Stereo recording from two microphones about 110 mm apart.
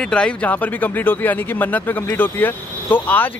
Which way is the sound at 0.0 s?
10° left (ahead or behind).